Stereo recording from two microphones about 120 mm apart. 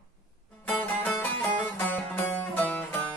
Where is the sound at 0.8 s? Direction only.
15° left (ahead or behind).